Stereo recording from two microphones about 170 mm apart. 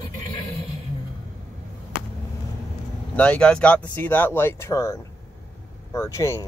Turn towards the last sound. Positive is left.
turn(degrees=15)  # may be behind; listen again after turning